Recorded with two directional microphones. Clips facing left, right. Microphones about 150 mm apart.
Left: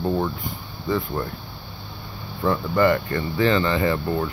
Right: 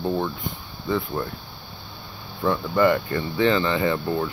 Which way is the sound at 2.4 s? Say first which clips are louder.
Even; centre (ahead or behind).